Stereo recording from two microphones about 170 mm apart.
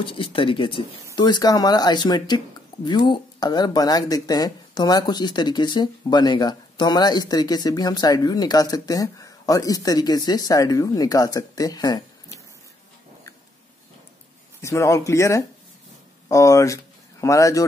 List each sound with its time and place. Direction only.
0.0 s speech: 30° left (ahead or behind)
14.6 s speech: 15° left (ahead or behind)